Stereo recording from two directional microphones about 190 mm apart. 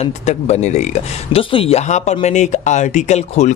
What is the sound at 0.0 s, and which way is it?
Speech, 35° left (ahead or behind).